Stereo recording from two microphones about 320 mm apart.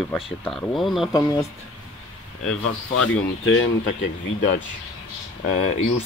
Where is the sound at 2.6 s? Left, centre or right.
Left.